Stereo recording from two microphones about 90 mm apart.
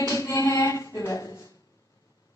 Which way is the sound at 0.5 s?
35° left (ahead or behind).